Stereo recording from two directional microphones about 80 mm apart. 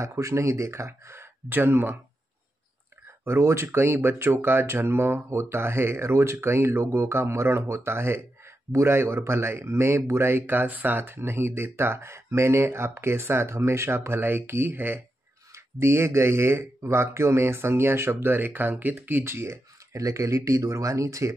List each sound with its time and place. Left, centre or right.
0.0 s speech: right
3.3 s speech: right